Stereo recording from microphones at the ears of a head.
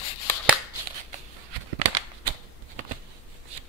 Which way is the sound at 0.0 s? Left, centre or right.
Left.